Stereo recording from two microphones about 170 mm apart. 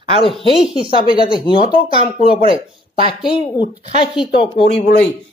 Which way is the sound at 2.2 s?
35° right (ahead or behind).